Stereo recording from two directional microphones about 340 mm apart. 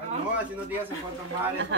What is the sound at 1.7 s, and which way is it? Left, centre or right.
Speech, right.